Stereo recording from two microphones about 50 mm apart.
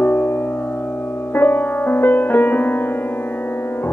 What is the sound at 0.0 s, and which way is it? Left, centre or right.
Music, left.